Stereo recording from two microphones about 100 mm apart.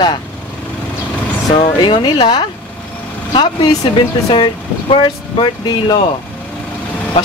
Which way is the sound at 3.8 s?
55° left (ahead or behind).